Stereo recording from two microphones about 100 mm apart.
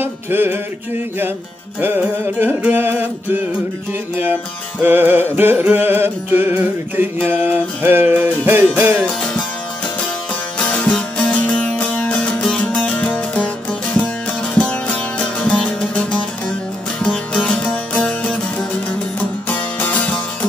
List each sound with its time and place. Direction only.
0.0 s music: 20° right (ahead or behind)
1.8 s music: 20° right (ahead or behind)
10.6 s music: 10° left (ahead or behind)
14.5 s music: 10° left (ahead or behind)